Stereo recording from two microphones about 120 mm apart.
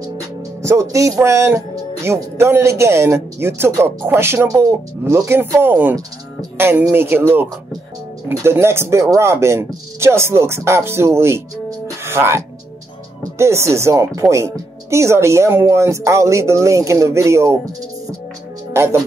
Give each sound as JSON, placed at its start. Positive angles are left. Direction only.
{"t": 0.6, "sound": "speech", "side_deg": -25}
{"t": 12.0, "sound": "music", "side_deg": -20}
{"t": 13.4, "sound": "speech", "side_deg": -25}
{"t": 18.7, "sound": "speech", "side_deg": -20}